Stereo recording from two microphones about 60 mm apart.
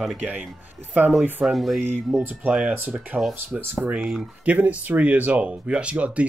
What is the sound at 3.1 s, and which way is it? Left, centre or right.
Speech, right.